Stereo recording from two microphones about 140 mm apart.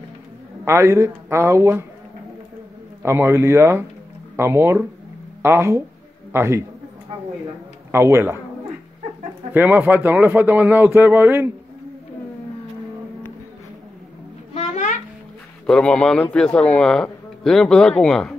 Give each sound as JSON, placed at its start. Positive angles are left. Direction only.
{"t": 0.7, "sound": "speech", "side_deg": -20}
{"t": 3.0, "sound": "a man's voice", "side_deg": -20}
{"t": 7.9, "sound": "speech", "side_deg": -20}
{"t": 9.5, "sound": "a man's voice", "side_deg": -15}
{"t": 14.5, "sound": "babbling", "side_deg": 55}
{"t": 15.6, "sound": "a man's voice", "side_deg": 5}